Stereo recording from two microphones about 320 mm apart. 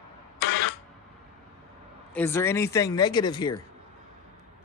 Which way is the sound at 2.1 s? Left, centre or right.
Centre.